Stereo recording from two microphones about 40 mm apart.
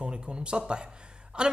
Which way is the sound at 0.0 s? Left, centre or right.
Right.